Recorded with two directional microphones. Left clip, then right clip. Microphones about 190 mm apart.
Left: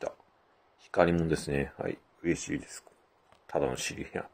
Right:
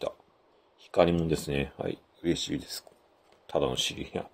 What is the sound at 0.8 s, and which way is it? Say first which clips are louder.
Speech: right 2 dB; 30° right (ahead or behind).